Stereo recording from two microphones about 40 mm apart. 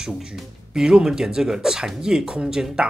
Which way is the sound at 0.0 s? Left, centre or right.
Centre.